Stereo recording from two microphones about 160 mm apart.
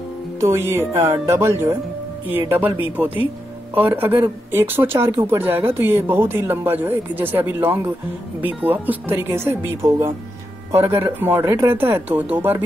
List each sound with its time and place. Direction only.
0.4 s speech: 15° right (ahead or behind)